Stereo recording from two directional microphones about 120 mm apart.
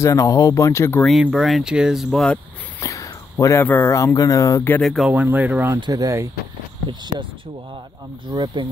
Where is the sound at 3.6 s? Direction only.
15° left (ahead or behind).